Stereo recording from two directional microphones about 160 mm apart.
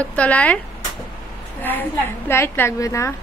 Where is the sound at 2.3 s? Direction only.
15° left (ahead or behind).